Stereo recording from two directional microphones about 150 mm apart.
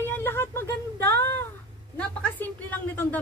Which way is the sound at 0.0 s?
15° left (ahead or behind).